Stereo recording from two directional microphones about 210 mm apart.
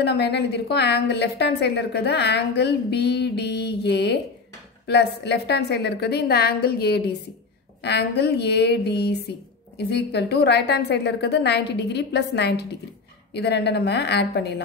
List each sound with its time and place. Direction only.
0.0 s a woman's voice: 50° left (ahead or behind)